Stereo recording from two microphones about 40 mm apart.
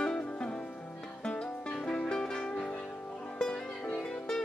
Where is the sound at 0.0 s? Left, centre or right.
Left.